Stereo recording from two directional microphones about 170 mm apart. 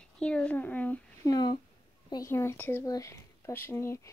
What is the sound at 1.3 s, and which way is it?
Speech, 25° left (ahead or behind).